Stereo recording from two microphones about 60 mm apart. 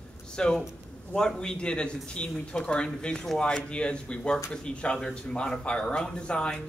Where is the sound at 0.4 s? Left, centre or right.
Centre.